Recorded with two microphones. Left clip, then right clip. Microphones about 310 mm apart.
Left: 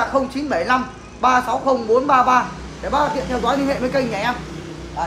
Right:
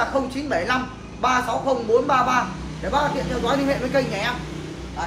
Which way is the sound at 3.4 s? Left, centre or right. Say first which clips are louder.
Left 2 dB; left.